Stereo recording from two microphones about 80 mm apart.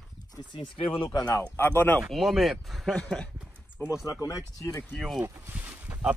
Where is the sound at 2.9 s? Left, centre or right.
Centre.